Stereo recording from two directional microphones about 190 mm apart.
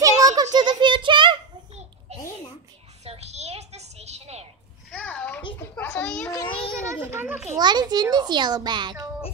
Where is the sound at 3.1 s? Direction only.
35° right (ahead or behind).